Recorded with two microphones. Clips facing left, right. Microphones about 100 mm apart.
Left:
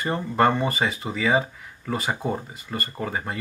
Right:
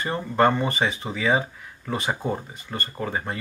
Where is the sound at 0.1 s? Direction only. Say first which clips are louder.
Even; centre (ahead or behind).